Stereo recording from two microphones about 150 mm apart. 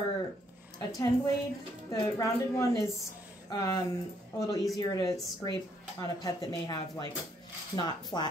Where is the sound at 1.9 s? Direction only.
20° left (ahead or behind).